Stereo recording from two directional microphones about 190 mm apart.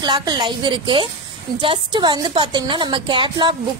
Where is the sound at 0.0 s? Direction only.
20° right (ahead or behind).